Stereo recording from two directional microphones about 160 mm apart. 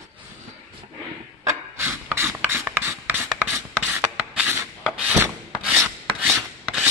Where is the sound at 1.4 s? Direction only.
15° right (ahead or behind).